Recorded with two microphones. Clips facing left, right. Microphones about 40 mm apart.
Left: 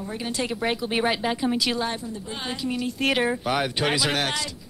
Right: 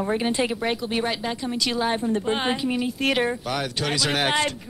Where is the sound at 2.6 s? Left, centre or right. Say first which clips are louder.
Right 3 dB; centre.